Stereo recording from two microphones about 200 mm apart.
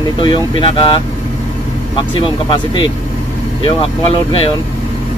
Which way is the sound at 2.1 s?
25° left (ahead or behind).